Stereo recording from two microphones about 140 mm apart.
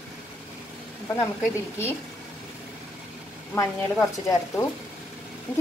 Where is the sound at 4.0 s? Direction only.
25° left (ahead or behind).